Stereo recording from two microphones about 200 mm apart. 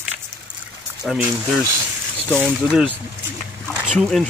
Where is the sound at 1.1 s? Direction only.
Centre (ahead or behind).